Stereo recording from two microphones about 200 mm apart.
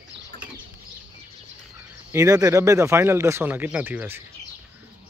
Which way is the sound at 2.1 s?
15° right (ahead or behind).